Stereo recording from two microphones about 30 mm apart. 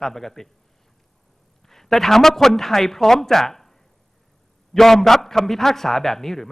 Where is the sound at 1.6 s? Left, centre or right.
Centre.